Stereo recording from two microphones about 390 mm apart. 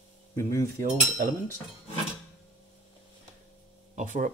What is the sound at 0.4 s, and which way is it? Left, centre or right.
Speech, right.